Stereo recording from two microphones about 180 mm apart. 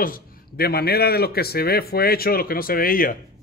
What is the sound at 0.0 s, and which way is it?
Speech, 55° left (ahead or behind).